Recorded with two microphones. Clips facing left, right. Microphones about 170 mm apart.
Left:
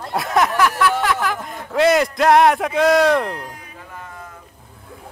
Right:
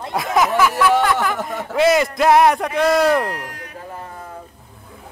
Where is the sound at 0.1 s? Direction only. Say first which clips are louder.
Right 1 dB; centre (ahead or behind).